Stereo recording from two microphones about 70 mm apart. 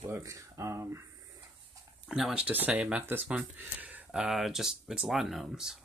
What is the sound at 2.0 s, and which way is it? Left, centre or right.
Speech, centre.